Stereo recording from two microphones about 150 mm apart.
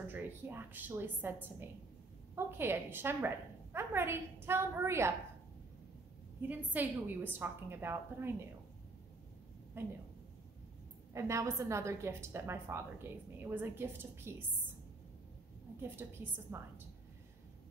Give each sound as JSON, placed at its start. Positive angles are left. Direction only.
{"t": 0.0, "sound": "a woman's voice", "side_deg": -15}
{"t": 6.4, "sound": "a woman's voice", "side_deg": -10}
{"t": 9.8, "sound": "a woman's voice", "side_deg": -15}
{"t": 11.1, "sound": "a woman's voice", "side_deg": -20}
{"t": 15.8, "sound": "a woman's voice", "side_deg": -15}